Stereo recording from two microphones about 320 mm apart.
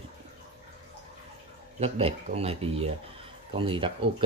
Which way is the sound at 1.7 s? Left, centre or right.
Centre.